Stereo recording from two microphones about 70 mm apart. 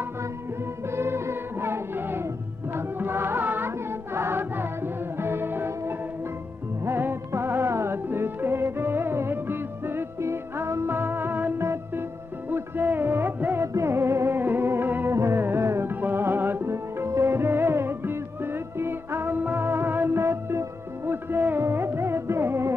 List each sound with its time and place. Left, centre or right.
0.8 s music: right